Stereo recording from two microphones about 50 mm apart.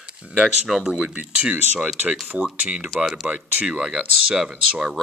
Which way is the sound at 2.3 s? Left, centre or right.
Right.